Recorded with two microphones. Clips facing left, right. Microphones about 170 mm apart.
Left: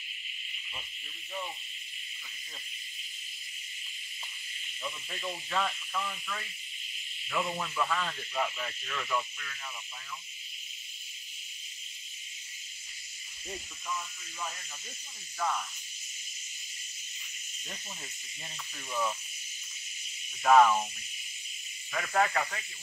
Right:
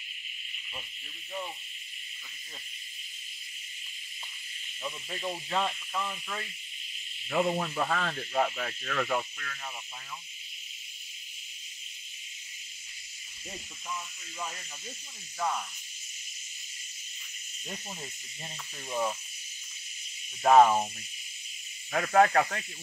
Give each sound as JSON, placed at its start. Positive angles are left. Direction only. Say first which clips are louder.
{"t": 5.2, "sound": "speech", "louder": "right 2 dB", "side_deg": -25}
{"t": 7.2, "sound": "speech", "louder": "right 6 dB", "side_deg": -40}
{"t": 18.9, "sound": "speech", "louder": "right 2 dB", "side_deg": -30}
{"t": 20.4, "sound": "speech", "louder": "right 2 dB", "side_deg": -35}
{"t": 21.9, "sound": "speech", "louder": "right 6 dB", "side_deg": -55}